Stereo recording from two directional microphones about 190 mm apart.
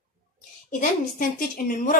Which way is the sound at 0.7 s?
45° left (ahead or behind).